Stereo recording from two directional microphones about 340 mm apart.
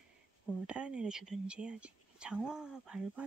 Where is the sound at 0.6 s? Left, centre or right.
Centre.